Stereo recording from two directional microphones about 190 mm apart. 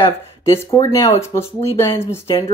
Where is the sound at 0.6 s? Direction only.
15° left (ahead or behind).